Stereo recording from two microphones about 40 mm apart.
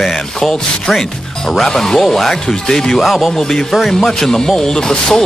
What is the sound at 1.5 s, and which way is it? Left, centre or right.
Speech, centre.